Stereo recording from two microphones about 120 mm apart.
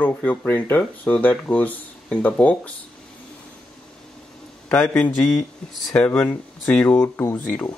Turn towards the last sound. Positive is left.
turn(degrees=15)  # may be behind; listen again after turning